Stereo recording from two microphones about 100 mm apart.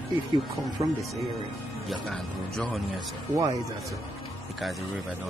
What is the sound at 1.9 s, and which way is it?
Speech, 5° left (ahead or behind).